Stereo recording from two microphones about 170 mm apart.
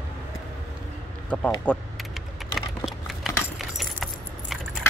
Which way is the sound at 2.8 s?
Centre (ahead or behind).